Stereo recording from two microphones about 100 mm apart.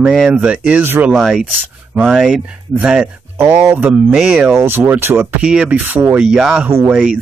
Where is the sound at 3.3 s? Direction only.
25° right (ahead or behind).